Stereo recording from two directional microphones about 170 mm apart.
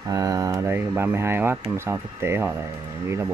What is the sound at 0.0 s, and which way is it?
Speech, 20° right (ahead or behind).